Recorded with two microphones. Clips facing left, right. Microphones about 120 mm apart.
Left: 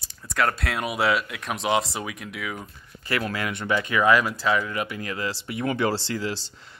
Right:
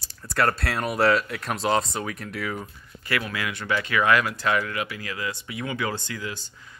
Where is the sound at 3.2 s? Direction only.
35° left (ahead or behind).